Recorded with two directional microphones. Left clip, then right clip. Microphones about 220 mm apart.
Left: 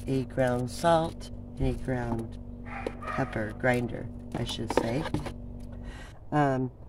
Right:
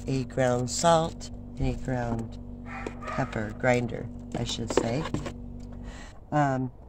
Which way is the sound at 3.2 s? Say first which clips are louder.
Right 1 dB; 30° right (ahead or behind).